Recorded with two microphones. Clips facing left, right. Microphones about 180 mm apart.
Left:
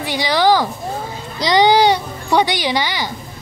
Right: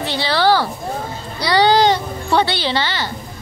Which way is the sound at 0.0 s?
15° left (ahead or behind).